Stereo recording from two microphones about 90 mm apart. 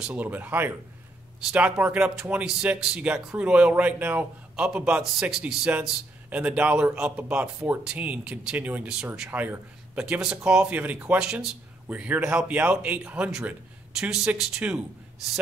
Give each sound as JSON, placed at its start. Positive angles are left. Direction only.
{"t": 0.0, "sound": "speech", "side_deg": -15}
{"t": 9.3, "sound": "speech", "side_deg": -20}
{"t": 9.9, "sound": "speech", "side_deg": -10}